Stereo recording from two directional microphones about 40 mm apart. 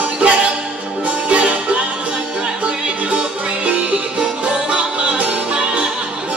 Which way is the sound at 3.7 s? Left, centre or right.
Right.